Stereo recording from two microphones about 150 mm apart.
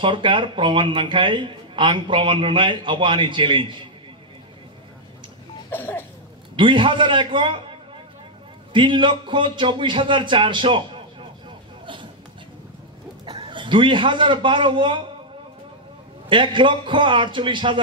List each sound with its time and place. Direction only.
0.0 s a man's voice: 35° right (ahead or behind)
5.7 s cough: 15° left (ahead or behind)
6.5 s a man's voice: 35° right (ahead or behind)
8.7 s a man's voice: 30° right (ahead or behind)
11.8 s a sound: 35° right (ahead or behind)
13.2 s a man's voice: 30° right (ahead or behind)
16.3 s a man's voice: 35° right (ahead or behind)